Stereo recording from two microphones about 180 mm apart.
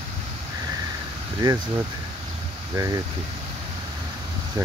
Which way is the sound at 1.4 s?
20° right (ahead or behind).